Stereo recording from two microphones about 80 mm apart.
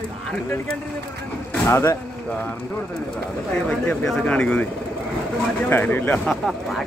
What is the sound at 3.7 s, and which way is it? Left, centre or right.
Speech, centre.